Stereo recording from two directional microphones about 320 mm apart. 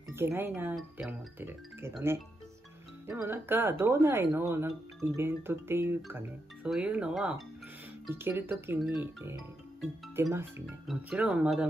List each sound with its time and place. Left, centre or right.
0.1 s speech: centre